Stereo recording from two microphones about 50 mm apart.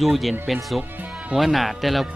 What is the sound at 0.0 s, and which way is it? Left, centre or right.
Speech, centre.